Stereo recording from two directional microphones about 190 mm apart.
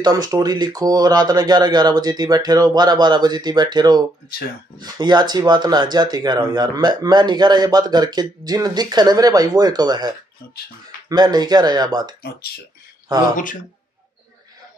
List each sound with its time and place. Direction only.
0.0 s speech: 20° right (ahead or behind)
4.3 s speech: 55° left (ahead or behind)
4.7 s speech: 20° right (ahead or behind)
12.2 s speech: 55° left (ahead or behind)